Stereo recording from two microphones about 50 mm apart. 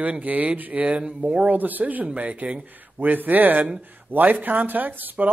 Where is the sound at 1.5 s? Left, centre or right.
Right.